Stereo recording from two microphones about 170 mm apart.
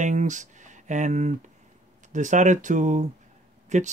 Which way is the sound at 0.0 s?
45° right (ahead or behind).